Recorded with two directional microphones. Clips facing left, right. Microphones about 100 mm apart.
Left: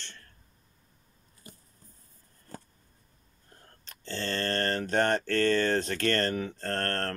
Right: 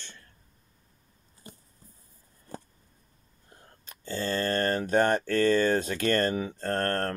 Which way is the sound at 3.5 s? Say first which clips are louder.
Right 2 dB; 15° right (ahead or behind).